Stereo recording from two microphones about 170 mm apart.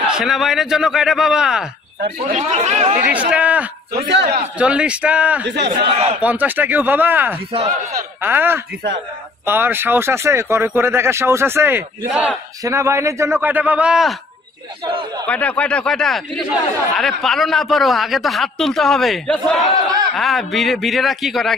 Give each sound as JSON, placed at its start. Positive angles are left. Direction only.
{"t": 0.1, "sound": "speech", "side_deg": 0}
{"t": 2.3, "sound": "speech", "side_deg": -40}
{"t": 3.0, "sound": "speech", "side_deg": -10}
{"t": 3.9, "sound": "a man's voice", "side_deg": -85}
{"t": 4.6, "sound": "speech", "side_deg": -5}
{"t": 5.4, "sound": "a man's voice", "side_deg": -90}
{"t": 6.2, "sound": "speech", "side_deg": -10}
{"t": 12.6, "sound": "speech", "side_deg": -15}
{"t": 14.9, "sound": "speech", "side_deg": -30}
{"t": 15.2, "sound": "speech", "side_deg": 10}